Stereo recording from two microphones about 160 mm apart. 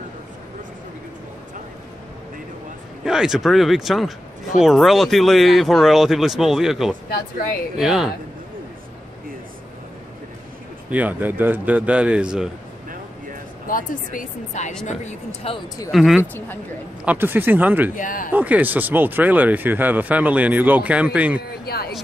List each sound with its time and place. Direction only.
3.1 s speech: 5° right (ahead or behind)
10.9 s speech: 10° right (ahead or behind)
13.7 s speech: 60° left (ahead or behind)
15.9 s speech: centre (ahead or behind)
16.2 s speech: 15° left (ahead or behind)
17.0 s speech: 10° right (ahead or behind)
17.9 s speech: 55° left (ahead or behind)
18.3 s speech: 10° right (ahead or behind)
21.4 s speech: 80° left